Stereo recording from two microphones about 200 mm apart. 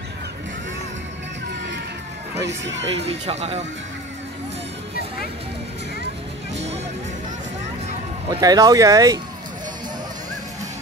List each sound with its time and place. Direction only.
2.4 s speech: 65° right (ahead or behind)
3.1 s speech: 30° right (ahead or behind)
8.3 s speech: 20° right (ahead or behind)